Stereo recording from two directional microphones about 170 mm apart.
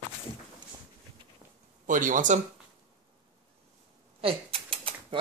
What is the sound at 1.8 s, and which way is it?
Speech, 50° right (ahead or behind).